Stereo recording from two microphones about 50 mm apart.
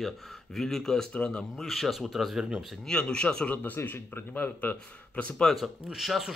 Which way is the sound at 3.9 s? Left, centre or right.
Left.